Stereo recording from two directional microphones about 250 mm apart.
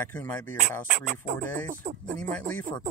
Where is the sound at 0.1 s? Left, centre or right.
Centre.